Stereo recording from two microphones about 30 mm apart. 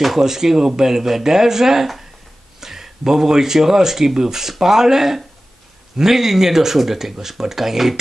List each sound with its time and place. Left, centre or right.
0.2 s speech: centre